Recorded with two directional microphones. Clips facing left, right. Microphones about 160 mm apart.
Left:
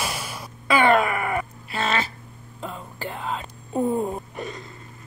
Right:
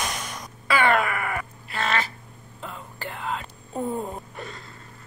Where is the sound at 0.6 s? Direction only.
20° left (ahead or behind).